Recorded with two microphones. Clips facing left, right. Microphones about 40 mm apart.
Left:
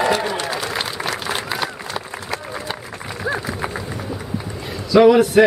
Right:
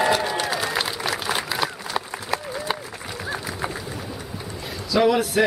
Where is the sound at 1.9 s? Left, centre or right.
Centre.